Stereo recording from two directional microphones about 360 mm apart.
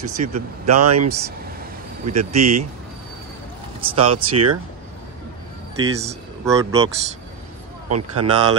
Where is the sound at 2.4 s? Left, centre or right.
Right.